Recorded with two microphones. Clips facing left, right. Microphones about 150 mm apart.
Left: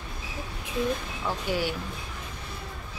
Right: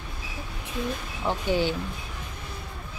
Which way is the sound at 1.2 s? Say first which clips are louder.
Right 5 dB; 25° right (ahead or behind).